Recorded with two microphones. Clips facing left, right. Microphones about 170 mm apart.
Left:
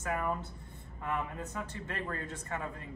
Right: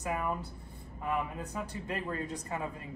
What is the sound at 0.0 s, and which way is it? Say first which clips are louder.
A man's voice: even; 15° right (ahead or behind).